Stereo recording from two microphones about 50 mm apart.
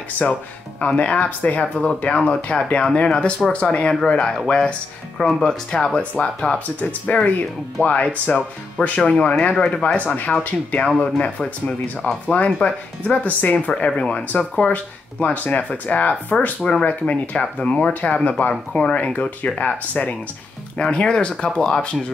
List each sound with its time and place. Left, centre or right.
0.2 s speech: left; by 5.9 s centre
5.9 s speech: left
6.8 s speech: left; by 9.9 s centre
9.9 s speech: left
12.4 s speech: centre
13.0 s speech: left
13.7 s speech: left
16.6 s speech: centre; by 20.2 s left
20.9 s speech: centre